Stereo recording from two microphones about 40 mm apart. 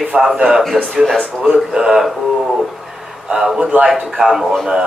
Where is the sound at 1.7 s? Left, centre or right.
Centre.